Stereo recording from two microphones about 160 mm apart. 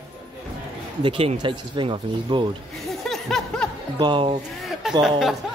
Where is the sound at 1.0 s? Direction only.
35° right (ahead or behind).